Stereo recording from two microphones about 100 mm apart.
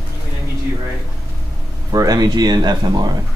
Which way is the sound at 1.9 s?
35° right (ahead or behind).